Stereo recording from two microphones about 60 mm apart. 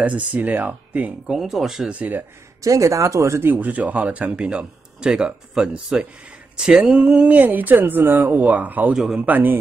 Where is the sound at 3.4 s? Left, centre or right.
Right.